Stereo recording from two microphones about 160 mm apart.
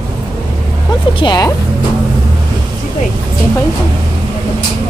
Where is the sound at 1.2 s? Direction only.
25° left (ahead or behind).